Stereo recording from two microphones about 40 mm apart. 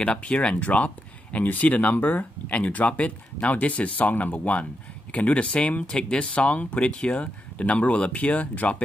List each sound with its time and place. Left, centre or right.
0.1 s speech: left
2.4 s speech: left